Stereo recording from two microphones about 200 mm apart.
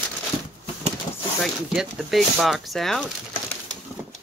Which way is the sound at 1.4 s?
Centre (ahead or behind).